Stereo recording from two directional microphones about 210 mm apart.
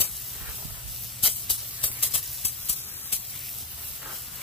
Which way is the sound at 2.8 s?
10° left (ahead or behind).